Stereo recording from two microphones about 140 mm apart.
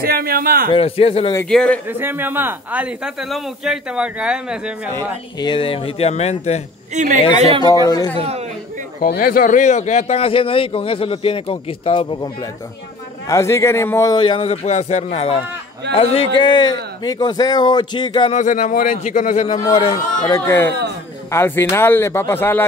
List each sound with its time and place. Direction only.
0.0 s a man's voice: 90° right
0.7 s speech: 45° left (ahead or behind)
1.5 s speech: 5° left (ahead or behind)
1.9 s a man's voice: 15° right (ahead or behind)
5.4 s speech: 35° left (ahead or behind); by 6.6 s 50° left (ahead or behind)
6.9 s a woman's voice: 60° right (ahead or behind)
7.6 s a man's voice: 25° left (ahead or behind)
8.2 s speech: 45° right (ahead or behind)
9.0 s a man's voice: 90° left; by 12.4 s 30° left (ahead or behind)
13.3 s a man's voice: 20° left (ahead or behind)
14.1 s a man's voice: 35° left (ahead or behind)
18.3 s speech: 60° left (ahead or behind)
19.4 s speech: 45° left (ahead or behind)
20.2 s a man's voice: 20° left (ahead or behind)